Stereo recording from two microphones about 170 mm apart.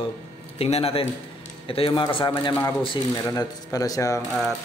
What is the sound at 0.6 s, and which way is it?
A man's voice, 35° left (ahead or behind).